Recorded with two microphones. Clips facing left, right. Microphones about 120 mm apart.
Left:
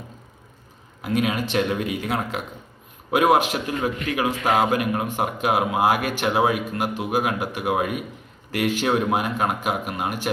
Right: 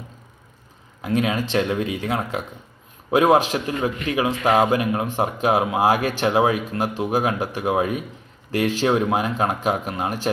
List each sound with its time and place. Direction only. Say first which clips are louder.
1.1 s speech: right 1 dB; 30° right (ahead or behind)